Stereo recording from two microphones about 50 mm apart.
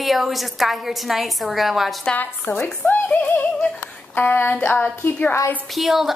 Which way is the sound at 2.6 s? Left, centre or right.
Left.